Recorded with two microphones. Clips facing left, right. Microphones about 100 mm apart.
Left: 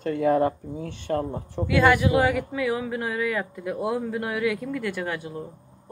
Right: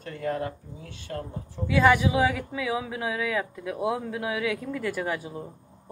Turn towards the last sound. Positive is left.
turn(degrees=-5)  # may be behind; listen again after turning